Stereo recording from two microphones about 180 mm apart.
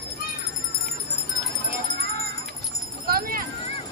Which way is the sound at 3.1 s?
55° right (ahead or behind).